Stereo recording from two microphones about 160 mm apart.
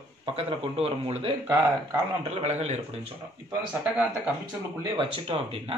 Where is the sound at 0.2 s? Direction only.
35° right (ahead or behind).